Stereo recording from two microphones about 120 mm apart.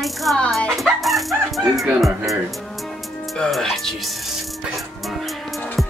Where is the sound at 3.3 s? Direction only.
Centre (ahead or behind).